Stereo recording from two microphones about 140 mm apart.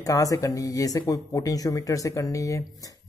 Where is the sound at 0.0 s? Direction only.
25° left (ahead or behind).